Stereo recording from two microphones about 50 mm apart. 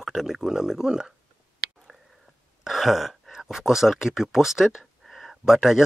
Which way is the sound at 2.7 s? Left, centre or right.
Centre.